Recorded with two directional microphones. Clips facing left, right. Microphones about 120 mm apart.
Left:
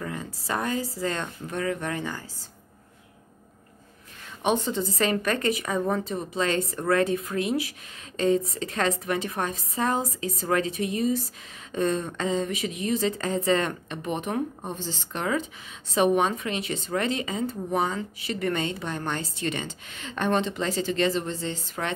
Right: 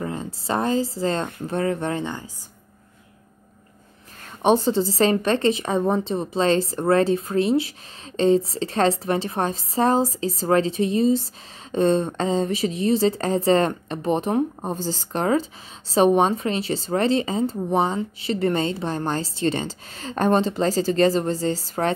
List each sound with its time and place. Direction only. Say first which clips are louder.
0.0 s a woman's voice: right 5 dB; 25° right (ahead or behind)
4.4 s a woman's voice: right 7 dB; 35° right (ahead or behind)